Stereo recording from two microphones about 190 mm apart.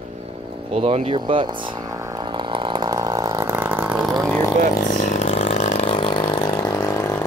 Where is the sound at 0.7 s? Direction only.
30° right (ahead or behind); by 4.3 s centre (ahead or behind).